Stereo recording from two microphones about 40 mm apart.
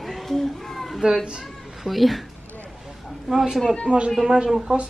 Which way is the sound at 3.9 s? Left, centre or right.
Right.